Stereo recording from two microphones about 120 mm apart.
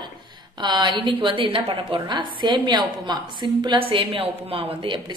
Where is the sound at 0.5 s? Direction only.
40° right (ahead or behind).